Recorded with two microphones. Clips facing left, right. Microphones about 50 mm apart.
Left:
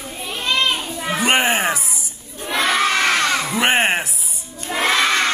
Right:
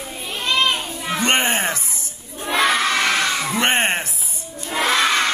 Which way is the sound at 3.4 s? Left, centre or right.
Centre.